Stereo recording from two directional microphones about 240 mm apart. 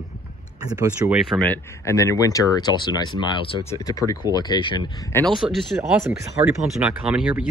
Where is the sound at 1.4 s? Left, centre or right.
Centre.